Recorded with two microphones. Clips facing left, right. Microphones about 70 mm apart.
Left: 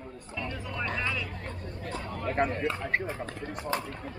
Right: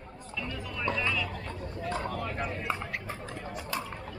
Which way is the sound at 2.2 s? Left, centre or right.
Left.